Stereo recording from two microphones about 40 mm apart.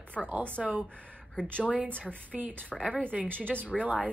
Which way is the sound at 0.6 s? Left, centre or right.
Right.